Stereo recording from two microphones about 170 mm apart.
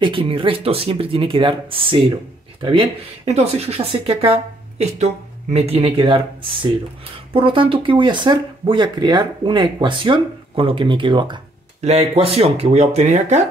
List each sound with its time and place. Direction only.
0.0 s speech: 30° right (ahead or behind)
11.8 s speech: 40° right (ahead or behind)